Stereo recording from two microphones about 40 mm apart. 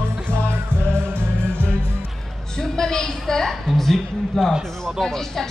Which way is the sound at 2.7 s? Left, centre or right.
Centre.